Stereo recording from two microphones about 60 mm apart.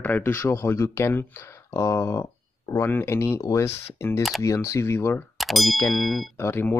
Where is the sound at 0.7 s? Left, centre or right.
Left.